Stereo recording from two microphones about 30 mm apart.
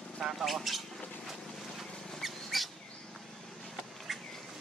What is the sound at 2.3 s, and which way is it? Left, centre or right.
Bird, centre.